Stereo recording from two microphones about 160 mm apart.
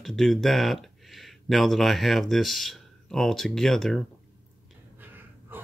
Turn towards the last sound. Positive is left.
turn(degrees=-10)  # may be behind; listen again after turning